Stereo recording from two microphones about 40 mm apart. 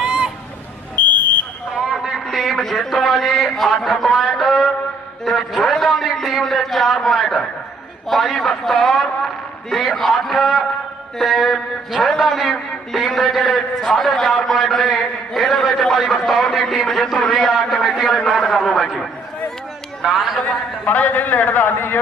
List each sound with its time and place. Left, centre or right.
0.0 s fowl: centre
0.9 s fire alarm: left
2.3 s a man's voice: centre
20.0 s speech: centre
20.8 s a man's voice: left
21.7 s a man's voice: left